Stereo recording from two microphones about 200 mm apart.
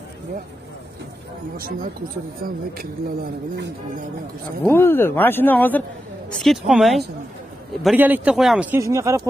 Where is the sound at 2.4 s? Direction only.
45° right (ahead or behind).